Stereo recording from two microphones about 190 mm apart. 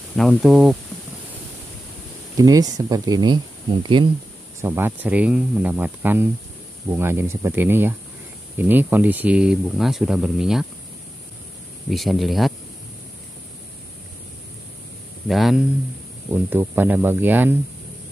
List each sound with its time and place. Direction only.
0.1 s speech: centre (ahead or behind)
2.3 s speech: 20° right (ahead or behind)
4.6 s speech: 10° right (ahead or behind)
11.9 s speech: centre (ahead or behind)
15.2 s speech: centre (ahead or behind)